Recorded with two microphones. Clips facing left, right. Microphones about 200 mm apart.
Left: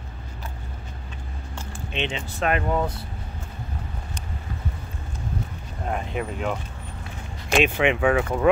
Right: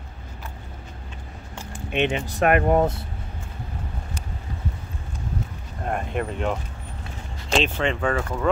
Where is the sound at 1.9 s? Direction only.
55° right (ahead or behind).